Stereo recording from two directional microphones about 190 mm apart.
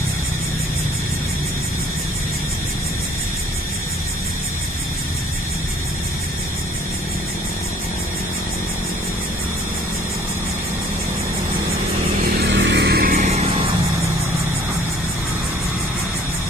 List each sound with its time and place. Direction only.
12.4 s vehicle: 70° right (ahead or behind); by 13.3 s 50° right (ahead or behind)